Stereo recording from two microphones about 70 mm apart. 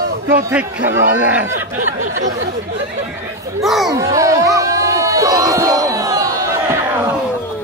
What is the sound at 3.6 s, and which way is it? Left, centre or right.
Speech, centre.